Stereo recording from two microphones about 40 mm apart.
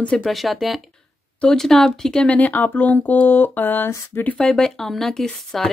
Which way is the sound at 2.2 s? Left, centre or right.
Left.